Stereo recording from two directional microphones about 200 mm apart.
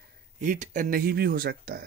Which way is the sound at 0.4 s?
40° right (ahead or behind).